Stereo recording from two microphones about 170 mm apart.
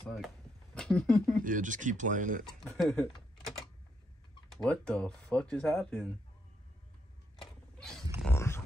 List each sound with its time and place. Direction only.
0.0 s a sound: centre (ahead or behind)
0.7 s speech: 5° left (ahead or behind)
1.4 s speech: 50° right (ahead or behind)
2.4 s speech: centre (ahead or behind)
4.5 s speech: 5° left (ahead or behind)
8.3 s a sound: 15° left (ahead or behind)